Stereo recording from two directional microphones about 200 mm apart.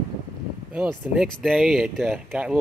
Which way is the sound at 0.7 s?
10° right (ahead or behind).